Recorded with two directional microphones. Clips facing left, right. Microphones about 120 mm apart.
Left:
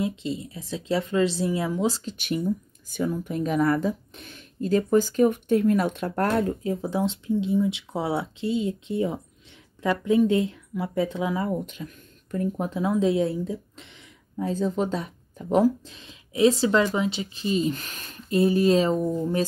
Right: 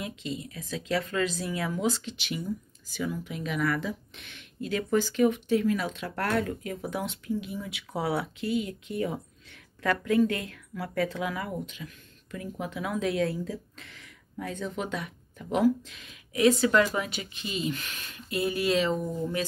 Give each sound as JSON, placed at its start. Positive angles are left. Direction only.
{"t": 0.0, "sound": "speech", "side_deg": 30}
{"t": 2.1, "sound": "speech", "side_deg": 50}
{"t": 6.2, "sound": "speech", "side_deg": 30}
{"t": 11.6, "sound": "speech", "side_deg": 45}
{"t": 14.5, "sound": "speech", "side_deg": 35}